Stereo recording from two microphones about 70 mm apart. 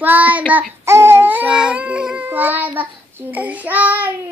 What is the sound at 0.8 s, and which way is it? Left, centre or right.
Baby cry, right.